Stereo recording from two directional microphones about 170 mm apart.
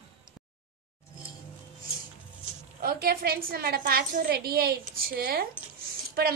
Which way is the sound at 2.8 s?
60° right (ahead or behind).